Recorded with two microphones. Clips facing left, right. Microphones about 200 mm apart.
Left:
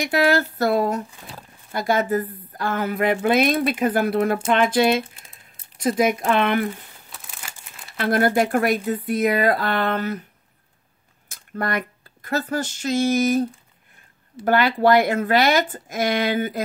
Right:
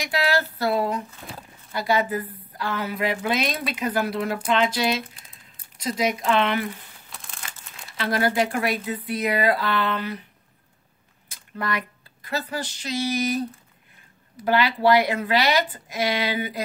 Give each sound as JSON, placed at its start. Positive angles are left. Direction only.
{"t": 0.0, "sound": "a woman's voice", "side_deg": 50}
{"t": 7.1, "sound": "a sound", "side_deg": 5}
{"t": 8.0, "sound": "a woman's voice", "side_deg": 50}
{"t": 11.2, "sound": "a woman's voice", "side_deg": 50}